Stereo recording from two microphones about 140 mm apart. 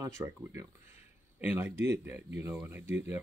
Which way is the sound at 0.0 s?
20° right (ahead or behind).